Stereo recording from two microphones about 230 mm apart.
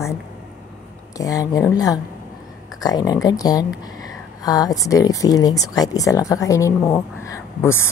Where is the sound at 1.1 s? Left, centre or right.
Centre.